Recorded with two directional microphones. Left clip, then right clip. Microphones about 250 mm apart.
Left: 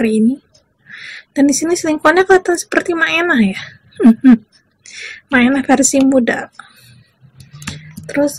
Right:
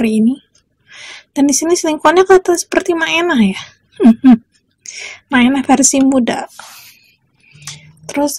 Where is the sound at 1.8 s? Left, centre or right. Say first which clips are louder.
Right 1 dB; right.